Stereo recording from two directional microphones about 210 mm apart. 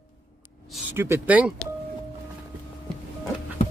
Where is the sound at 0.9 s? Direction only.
10° right (ahead or behind).